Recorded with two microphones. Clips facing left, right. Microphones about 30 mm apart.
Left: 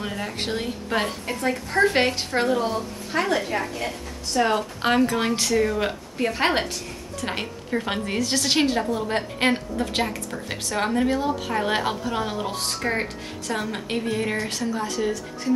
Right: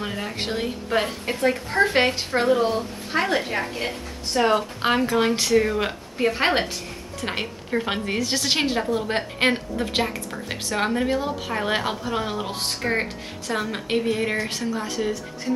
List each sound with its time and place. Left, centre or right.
0.0 s speech: centre
1.2 s a woman's voice: centre
2.5 s speech: centre
3.7 s a woman's voice: right
4.5 s a woman's voice: centre